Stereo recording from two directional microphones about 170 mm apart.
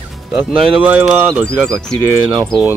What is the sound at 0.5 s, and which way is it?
Speech, 30° right (ahead or behind).